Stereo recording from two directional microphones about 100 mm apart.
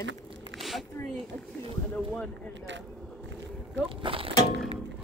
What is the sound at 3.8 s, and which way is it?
Speech, 65° right (ahead or behind).